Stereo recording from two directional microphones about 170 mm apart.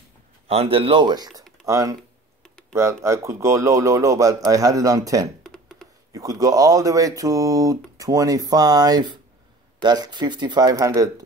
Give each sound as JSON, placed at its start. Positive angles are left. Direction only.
{"t": 0.5, "sound": "speech", "side_deg": -35}
{"t": 5.4, "sound": "a sound", "side_deg": 0}
{"t": 6.1, "sound": "speech", "side_deg": -20}